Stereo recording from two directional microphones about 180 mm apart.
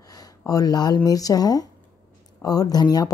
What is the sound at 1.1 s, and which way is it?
Speech, 20° left (ahead or behind).